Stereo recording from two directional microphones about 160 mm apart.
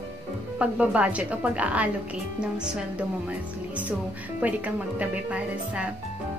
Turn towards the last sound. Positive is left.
turn(degrees=-10)  # may be behind; listen again after turning